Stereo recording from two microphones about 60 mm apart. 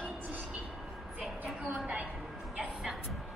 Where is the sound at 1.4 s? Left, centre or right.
Right.